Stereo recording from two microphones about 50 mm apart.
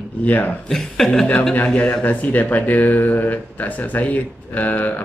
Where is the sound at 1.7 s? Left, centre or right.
Left.